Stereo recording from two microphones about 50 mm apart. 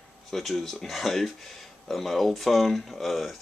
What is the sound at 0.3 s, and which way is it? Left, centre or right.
Speech, centre.